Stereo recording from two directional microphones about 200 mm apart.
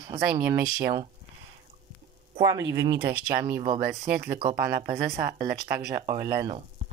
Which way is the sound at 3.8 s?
50° right (ahead or behind).